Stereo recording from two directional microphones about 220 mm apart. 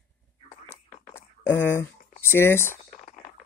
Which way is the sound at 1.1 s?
10° left (ahead or behind).